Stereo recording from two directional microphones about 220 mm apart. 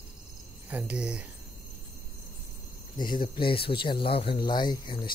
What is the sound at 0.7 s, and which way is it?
Speech, 5° right (ahead or behind).